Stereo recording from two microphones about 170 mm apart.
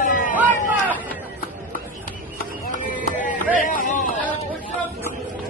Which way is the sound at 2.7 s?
50° left (ahead or behind).